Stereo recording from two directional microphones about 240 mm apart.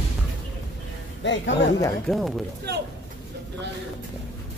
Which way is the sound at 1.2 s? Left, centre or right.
Left.